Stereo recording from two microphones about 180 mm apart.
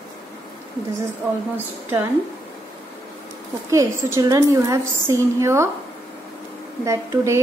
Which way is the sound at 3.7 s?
15° right (ahead or behind).